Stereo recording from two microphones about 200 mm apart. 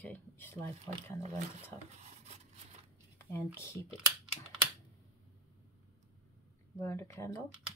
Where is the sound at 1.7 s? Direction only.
35° right (ahead or behind).